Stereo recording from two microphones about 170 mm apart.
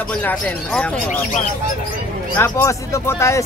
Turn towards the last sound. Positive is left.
turn(degrees=15)  # may be behind; listen again after turning